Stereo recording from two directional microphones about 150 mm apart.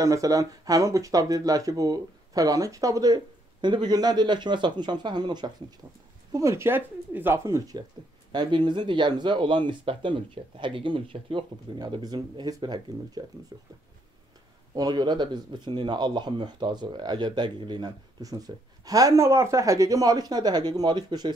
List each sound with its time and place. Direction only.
0.0 s speech: 20° right (ahead or behind)
14.7 s speech: 25° right (ahead or behind)